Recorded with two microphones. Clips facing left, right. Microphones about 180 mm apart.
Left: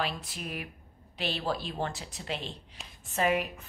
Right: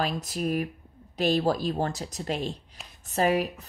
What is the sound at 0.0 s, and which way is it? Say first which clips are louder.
A woman's voice: right 7 dB; 40° right (ahead or behind).